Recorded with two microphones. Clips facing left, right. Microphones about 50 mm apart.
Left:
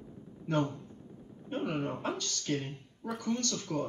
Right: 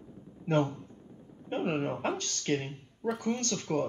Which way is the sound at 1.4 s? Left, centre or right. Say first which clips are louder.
Right 3 dB; right.